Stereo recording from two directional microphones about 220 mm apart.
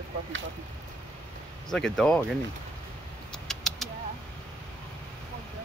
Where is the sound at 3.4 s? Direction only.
Centre (ahead or behind).